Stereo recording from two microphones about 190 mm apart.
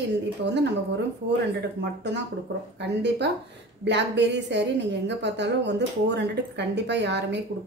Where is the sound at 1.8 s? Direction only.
65° right (ahead or behind).